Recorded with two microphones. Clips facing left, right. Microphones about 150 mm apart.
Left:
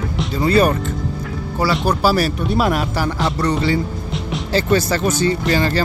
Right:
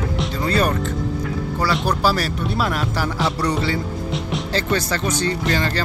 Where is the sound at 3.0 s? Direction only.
Centre (ahead or behind).